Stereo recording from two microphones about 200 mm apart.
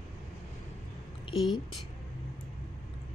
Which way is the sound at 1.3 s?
Centre (ahead or behind).